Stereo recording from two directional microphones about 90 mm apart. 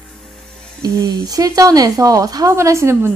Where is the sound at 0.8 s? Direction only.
45° right (ahead or behind).